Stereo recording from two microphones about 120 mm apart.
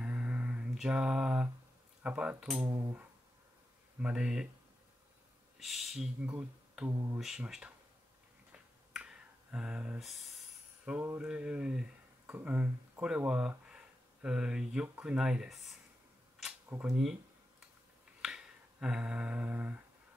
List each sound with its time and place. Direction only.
0.0 s mantra: 10° right (ahead or behind)
2.0 s speech: 10° right (ahead or behind)
2.6 s speech: 30° right (ahead or behind)
4.0 s speech: 10° right (ahead or behind)
5.6 s a sound: centre (ahead or behind)
8.9 s finger snapping: 5° right (ahead or behind)
10.9 s speech: 15° right (ahead or behind)
16.8 s a sound: 5° right (ahead or behind)
18.2 s a sound: 5° right (ahead or behind)